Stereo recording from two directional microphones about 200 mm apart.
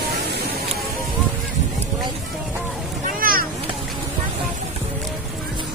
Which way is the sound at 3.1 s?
45° right (ahead or behind).